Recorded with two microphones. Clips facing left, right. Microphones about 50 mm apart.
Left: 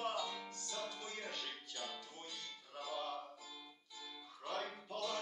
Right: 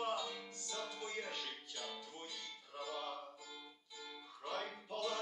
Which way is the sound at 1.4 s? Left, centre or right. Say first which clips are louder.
Even; left.